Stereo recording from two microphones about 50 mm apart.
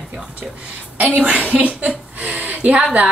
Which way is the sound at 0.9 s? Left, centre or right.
Right.